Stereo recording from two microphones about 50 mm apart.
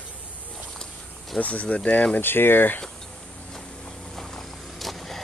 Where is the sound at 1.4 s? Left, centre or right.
Left.